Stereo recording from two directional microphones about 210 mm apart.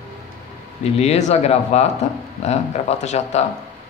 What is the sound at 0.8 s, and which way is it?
Speech, 30° left (ahead or behind).